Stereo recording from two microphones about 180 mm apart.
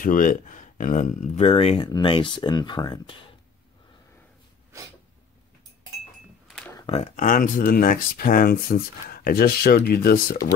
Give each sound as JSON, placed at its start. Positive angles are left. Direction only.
{"t": 0.0, "sound": "speech", "side_deg": 50}
{"t": 6.4, "sound": "cash register", "side_deg": 5}
{"t": 6.9, "sound": "speech", "side_deg": 40}